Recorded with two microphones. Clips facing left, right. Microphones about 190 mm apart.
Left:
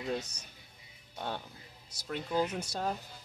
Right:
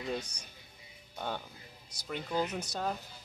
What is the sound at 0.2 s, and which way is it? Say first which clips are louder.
Speech: even; 5° left (ahead or behind).